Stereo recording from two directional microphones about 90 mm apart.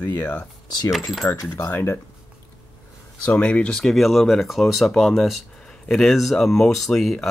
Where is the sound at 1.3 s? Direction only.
35° left (ahead or behind).